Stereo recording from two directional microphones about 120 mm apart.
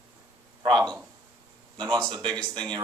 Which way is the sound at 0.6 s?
5° left (ahead or behind).